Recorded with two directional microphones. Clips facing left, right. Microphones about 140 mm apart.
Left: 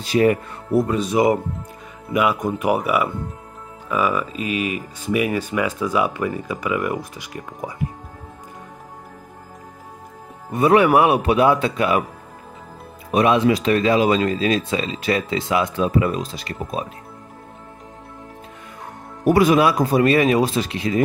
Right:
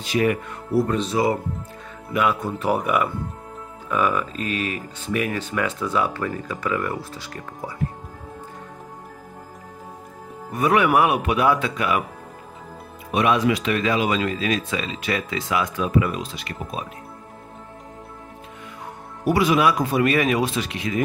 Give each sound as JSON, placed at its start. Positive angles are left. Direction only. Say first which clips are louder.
{"t": 0.0, "sound": "speech", "louder": "left 4 dB", "side_deg": 35}
{"t": 0.8, "sound": "speech", "louder": "left 3 dB", "side_deg": 10}
{"t": 10.5, "sound": "speech", "louder": "left 4 dB", "side_deg": 30}
{"t": 13.3, "sound": "speech", "louder": "left 3 dB", "side_deg": 30}
{"t": 19.2, "sound": "speech", "louder": "left 4 dB", "side_deg": 50}
{"t": 19.6, "sound": "speech", "louder": "left 3 dB", "side_deg": 35}